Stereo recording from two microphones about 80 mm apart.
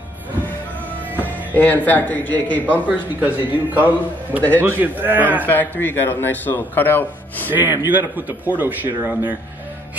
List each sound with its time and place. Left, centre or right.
1.2 s a man's voice: left
2.9 s a man's voice: centre
5.4 s a man's voice: left
7.4 s a man's voice: right